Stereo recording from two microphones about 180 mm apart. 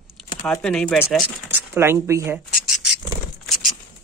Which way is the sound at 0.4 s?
5° left (ahead or behind).